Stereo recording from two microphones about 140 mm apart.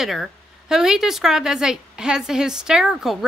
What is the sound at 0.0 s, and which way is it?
Speech, centre (ahead or behind).